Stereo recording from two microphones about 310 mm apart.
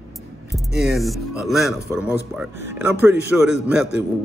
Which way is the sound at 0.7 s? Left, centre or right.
Centre.